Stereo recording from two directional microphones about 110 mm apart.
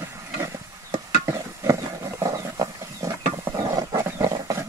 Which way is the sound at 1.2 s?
30° right (ahead or behind).